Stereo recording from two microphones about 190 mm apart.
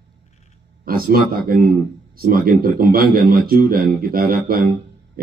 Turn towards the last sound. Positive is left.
turn(degrees=-50)  # may be behind; listen again after turning